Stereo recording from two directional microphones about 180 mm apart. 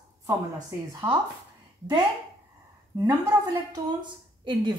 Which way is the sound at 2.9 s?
20° right (ahead or behind).